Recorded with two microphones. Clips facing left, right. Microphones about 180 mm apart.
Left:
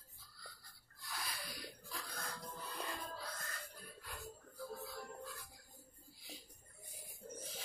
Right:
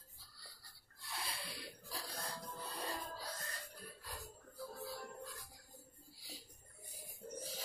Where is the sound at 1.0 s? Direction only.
30° right (ahead or behind).